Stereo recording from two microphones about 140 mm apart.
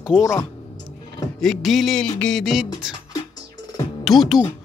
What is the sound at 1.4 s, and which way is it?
Speech, centre (ahead or behind).